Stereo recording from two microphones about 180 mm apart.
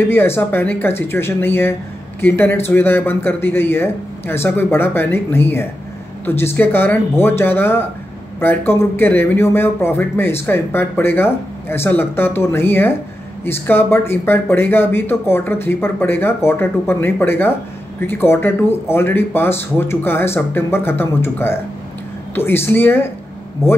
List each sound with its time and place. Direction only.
0.1 s a man's voice: 10° left (ahead or behind)